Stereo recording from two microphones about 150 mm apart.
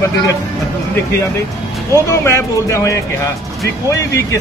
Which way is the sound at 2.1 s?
20° left (ahead or behind).